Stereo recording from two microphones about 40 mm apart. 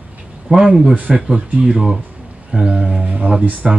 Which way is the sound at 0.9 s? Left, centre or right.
Right.